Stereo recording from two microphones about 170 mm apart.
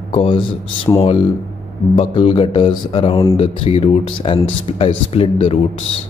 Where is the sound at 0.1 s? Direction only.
30° left (ahead or behind).